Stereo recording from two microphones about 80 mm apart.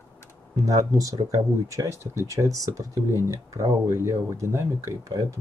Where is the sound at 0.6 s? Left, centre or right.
Right.